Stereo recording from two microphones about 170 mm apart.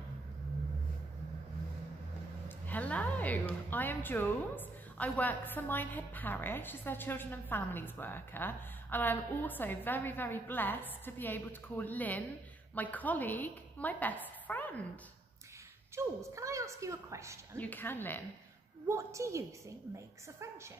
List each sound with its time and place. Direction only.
2.4 s a woman's voice: 10° left (ahead or behind)
16.0 s a woman's voice: 15° right (ahead or behind)
17.6 s a woman's voice: 10° left (ahead or behind)
18.9 s a woman's voice: 15° right (ahead or behind)